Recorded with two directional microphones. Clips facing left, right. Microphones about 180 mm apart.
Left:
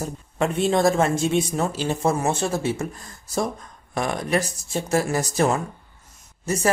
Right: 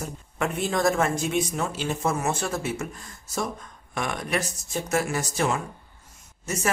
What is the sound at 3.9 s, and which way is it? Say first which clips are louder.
Speech: left 5 dB; 35° left (ahead or behind).